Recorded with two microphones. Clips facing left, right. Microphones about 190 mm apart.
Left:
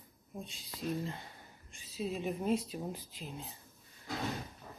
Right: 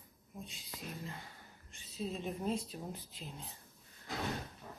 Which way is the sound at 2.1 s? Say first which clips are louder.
Left 5 dB; 5° left (ahead or behind).